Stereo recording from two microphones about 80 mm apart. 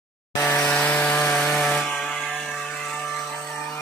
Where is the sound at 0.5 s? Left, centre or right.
Left.